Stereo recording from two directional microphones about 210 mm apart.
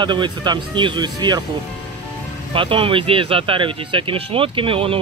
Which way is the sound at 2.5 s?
25° right (ahead or behind).